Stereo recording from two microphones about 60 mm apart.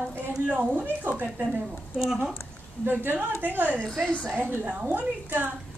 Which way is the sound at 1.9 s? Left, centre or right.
Centre.